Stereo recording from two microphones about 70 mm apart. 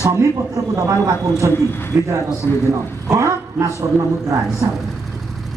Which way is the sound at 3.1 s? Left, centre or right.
Right.